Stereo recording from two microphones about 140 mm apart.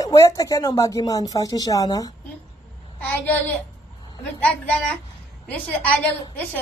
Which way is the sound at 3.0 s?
10° left (ahead or behind).